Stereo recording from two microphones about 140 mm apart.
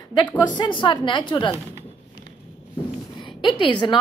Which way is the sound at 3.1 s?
35° left (ahead or behind).